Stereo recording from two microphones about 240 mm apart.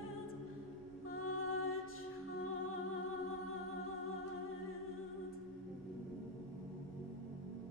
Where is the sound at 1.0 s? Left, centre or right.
Left.